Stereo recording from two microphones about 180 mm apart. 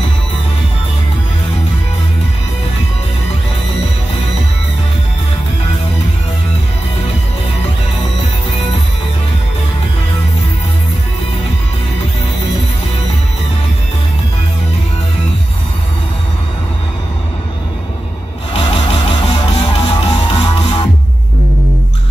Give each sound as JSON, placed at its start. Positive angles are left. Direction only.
{"t": 18.5, "sound": "vehicle", "side_deg": 30}
{"t": 19.6, "sound": "music", "side_deg": 25}